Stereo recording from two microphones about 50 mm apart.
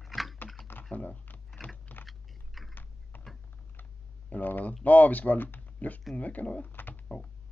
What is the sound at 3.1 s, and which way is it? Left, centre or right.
Typing, left.